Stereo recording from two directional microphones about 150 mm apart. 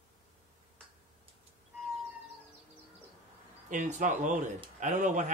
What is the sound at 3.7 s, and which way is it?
Speech, 55° right (ahead or behind).